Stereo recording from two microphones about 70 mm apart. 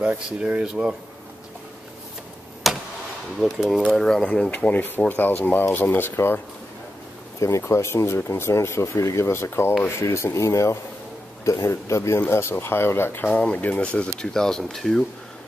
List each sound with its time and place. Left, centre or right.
0.4 s speech: centre
2.6 s a sound: centre
3.3 s speech: centre
3.9 s speech: centre; by 6.4 s left
7.3 s speech: left
13.3 s speech: centre